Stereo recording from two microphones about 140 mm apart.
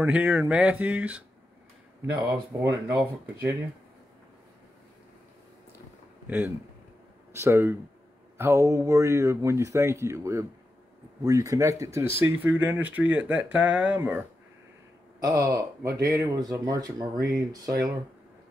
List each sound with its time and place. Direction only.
0.0 s speech: 15° right (ahead or behind)
2.1 s speech: 25° right (ahead or behind)
6.2 s speech: 15° right (ahead or behind)
15.1 s speech: 25° right (ahead or behind)